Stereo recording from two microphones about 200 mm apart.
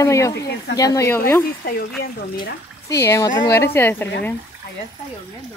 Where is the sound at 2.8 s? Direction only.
15° left (ahead or behind).